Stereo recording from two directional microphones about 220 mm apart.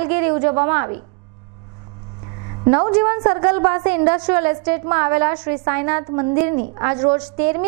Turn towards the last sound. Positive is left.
turn(degrees=-20)  # may be behind; listen again after turning